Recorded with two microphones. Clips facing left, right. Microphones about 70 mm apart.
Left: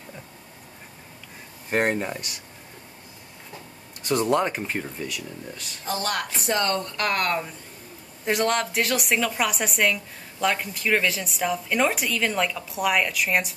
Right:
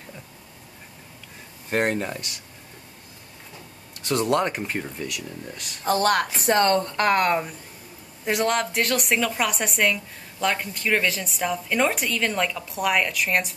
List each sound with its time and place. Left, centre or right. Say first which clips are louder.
1.7 s speech: even; left
4.1 s speech: even; centre
4.4 s a woman's voice: even; centre
5.9 s speech: right 7 dB; right; by 7.5 s centre
8.3 s a woman's voice: even; centre